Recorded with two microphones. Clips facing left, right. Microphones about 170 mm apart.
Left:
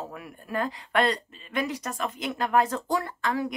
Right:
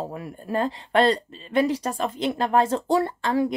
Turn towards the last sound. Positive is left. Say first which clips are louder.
# right 6 dB
turn(degrees=-30)  # may be behind; listen again after turning